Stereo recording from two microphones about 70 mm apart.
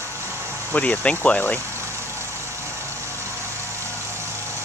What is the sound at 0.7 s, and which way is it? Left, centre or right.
Speech, left.